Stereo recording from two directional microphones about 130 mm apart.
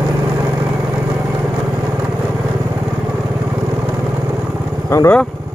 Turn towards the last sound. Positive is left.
turn(degrees=25)  # may be behind; listen again after turning